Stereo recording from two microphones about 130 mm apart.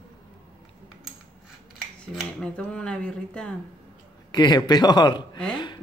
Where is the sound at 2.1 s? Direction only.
5° left (ahead or behind).